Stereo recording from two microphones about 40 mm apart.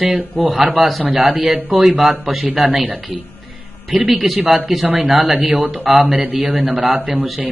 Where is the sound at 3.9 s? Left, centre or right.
Centre.